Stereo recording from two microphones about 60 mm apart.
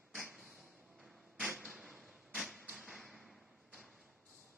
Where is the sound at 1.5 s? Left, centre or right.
Centre.